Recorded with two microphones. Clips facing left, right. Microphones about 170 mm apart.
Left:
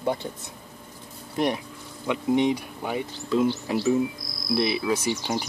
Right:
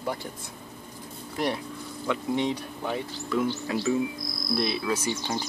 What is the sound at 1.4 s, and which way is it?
Speech, 25° left (ahead or behind).